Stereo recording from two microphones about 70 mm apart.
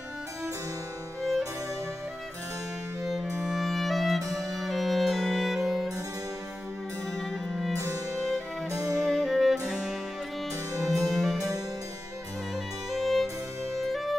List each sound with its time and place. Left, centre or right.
3.4 s music: centre
4.2 s music: right
4.6 s music: centre
7.2 s music: centre
7.7 s music: right
9.0 s music: centre
10.7 s music: right
11.1 s music: centre
12.9 s music: centre